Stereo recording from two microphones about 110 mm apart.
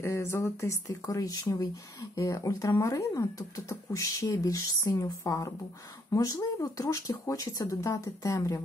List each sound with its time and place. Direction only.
0.0 s speech: 25° left (ahead or behind)